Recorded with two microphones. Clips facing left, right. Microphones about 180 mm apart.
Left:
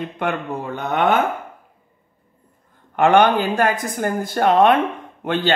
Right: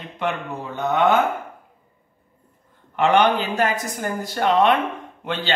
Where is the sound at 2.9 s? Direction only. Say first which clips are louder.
Left 3 dB; 50° left (ahead or behind).